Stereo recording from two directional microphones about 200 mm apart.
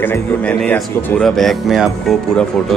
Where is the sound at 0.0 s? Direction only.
10° left (ahead or behind).